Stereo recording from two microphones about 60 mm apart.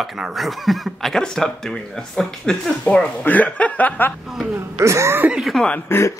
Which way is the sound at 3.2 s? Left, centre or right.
Left.